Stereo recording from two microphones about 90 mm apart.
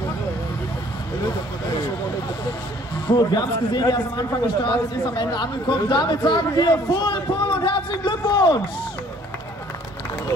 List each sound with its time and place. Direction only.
3.2 s a man's voice: 50° left (ahead or behind)